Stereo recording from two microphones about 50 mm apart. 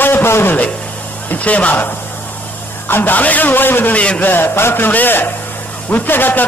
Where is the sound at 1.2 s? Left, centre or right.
Left.